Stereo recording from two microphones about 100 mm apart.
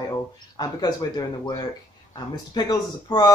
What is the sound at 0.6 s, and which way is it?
Speech, 40° left (ahead or behind).